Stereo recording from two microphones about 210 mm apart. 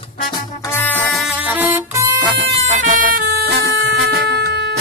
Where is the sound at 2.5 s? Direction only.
30° right (ahead or behind).